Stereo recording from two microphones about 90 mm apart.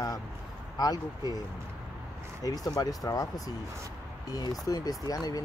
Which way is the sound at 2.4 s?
40° left (ahead or behind).